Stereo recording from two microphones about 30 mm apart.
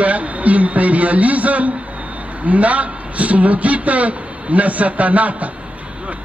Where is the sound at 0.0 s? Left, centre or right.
Right.